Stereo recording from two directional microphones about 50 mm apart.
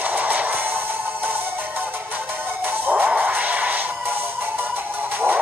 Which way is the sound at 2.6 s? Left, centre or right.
Right.